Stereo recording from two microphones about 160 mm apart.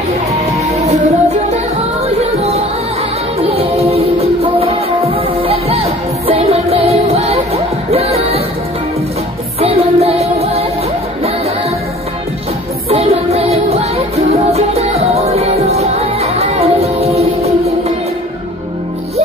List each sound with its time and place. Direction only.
0.7 s music: 45° right (ahead or behind)
9.6 s music: 40° right (ahead or behind)
12.9 s music: 40° right (ahead or behind)